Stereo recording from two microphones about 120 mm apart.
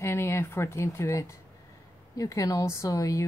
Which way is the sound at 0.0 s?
20° left (ahead or behind).